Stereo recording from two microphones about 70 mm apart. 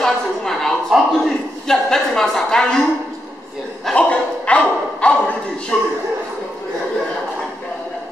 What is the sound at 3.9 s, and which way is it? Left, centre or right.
A man's voice, centre.